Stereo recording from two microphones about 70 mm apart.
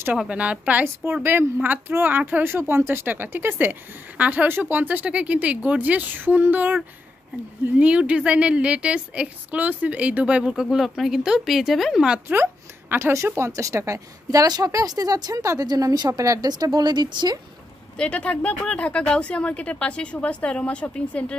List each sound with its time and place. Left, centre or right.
0.3 s a woman's voice: centre
10.5 s speech: centre
12.9 s a woman's voice: right
16.1 s a woman's voice: right
16.3 s speech: right
17.9 s speech: centre